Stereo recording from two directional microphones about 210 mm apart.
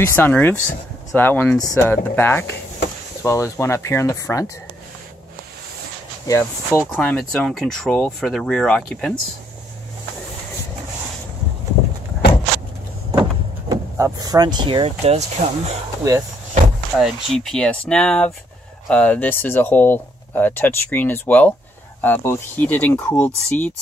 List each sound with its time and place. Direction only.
0.0 s speech: 10° left (ahead or behind)
6.2 s speech: 15° left (ahead or behind)
13.1 s speech: 20° right (ahead or behind)
16.0 s speech: 15° right (ahead or behind)
17.0 s speech: centre (ahead or behind)